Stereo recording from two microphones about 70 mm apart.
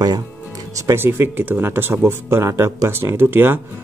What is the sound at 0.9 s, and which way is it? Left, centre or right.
Speech, right.